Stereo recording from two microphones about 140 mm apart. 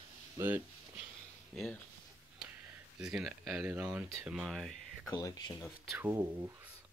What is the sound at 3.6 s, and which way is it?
Speech, 15° right (ahead or behind).